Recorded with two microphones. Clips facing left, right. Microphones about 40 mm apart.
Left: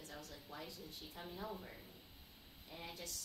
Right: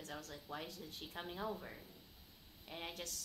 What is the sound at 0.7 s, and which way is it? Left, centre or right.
Speech, right.